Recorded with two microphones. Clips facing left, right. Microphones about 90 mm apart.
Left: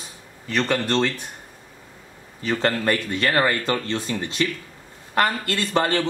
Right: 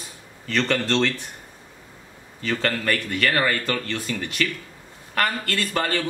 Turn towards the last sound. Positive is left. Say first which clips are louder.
# left 3 dB
turn(degrees=25)  # may be behind; listen again after turning